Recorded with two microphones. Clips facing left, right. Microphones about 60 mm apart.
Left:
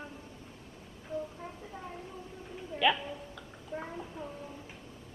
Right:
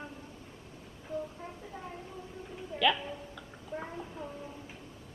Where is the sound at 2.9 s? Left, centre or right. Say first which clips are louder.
Even; centre.